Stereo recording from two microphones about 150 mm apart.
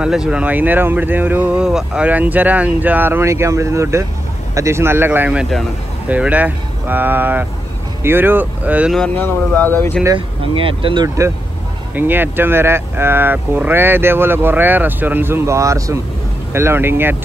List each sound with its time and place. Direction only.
0.0 s speech: 5° right (ahead or behind)
8.9 s speech: 10° left (ahead or behind)
10.1 s speech: 35° right (ahead or behind)
11.9 s speech: 15° right (ahead or behind)